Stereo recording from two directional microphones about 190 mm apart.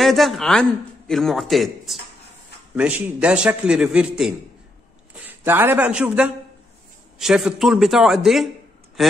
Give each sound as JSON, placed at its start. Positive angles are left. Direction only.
{"t": 0.0, "sound": "speech", "side_deg": 0}